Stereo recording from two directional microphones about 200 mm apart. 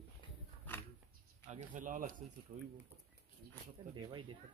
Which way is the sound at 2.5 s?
30° right (ahead or behind).